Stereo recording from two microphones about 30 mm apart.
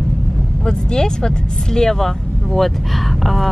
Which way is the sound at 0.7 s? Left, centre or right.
Left.